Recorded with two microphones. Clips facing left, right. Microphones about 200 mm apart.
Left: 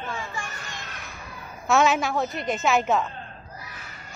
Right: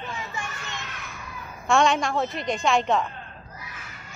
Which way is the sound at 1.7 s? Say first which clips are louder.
Even; 5° left (ahead or behind).